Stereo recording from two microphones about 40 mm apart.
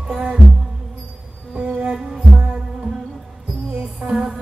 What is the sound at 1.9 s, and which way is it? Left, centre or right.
Music, centre.